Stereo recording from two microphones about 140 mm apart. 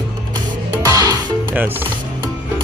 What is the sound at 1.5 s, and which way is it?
Speech, 15° right (ahead or behind).